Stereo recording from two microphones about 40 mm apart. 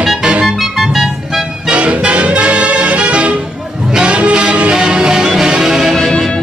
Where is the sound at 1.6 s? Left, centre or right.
Right; by 5.9 s centre.